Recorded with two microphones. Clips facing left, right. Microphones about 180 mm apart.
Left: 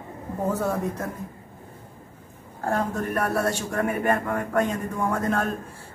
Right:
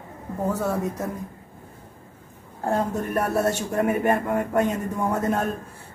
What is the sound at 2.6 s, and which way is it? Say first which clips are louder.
A man's voice: right 1 dB; 20° right (ahead or behind).